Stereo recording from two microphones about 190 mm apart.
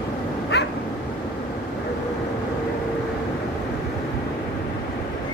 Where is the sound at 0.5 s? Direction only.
60° left (ahead or behind).